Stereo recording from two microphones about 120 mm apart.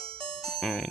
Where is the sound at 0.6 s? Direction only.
Centre (ahead or behind).